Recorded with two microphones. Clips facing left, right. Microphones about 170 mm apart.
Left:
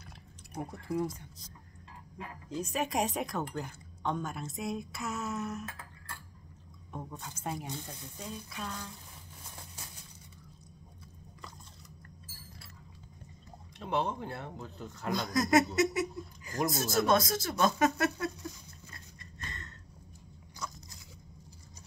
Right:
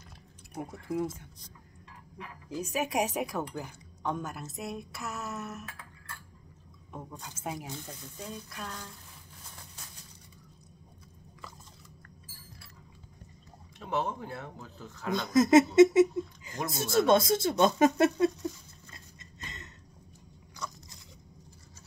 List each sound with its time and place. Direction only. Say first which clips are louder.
0.6 s speech: right 1 dB; 5° right (ahead or behind)
2.5 s speech: right 2 dB; 5° right (ahead or behind)
6.9 s speech: left 1 dB; centre (ahead or behind)
13.8 s speech: even; 5° right (ahead or behind)
15.3 s speech: right 8 dB; 25° right (ahead or behind)
18.9 s a sound: right 1 dB; 20° right (ahead or behind)
20.5 s biting: right 1 dB; centre (ahead or behind)